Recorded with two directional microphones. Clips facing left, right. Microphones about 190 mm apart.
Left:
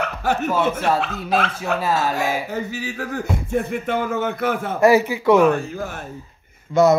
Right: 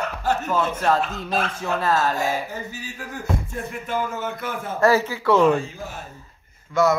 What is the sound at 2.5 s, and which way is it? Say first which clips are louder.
A man's voice: left 7 dB; 75° left (ahead or behind).